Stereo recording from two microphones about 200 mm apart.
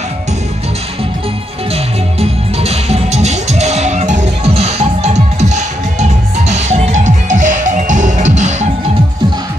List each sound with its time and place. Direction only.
1.7 s music: 30° right (ahead or behind)